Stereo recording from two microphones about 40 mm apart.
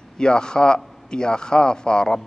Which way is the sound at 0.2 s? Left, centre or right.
Left.